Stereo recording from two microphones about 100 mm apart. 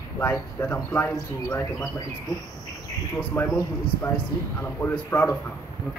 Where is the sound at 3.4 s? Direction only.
25° left (ahead or behind).